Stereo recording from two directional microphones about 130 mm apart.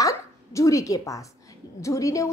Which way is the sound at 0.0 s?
25° left (ahead or behind).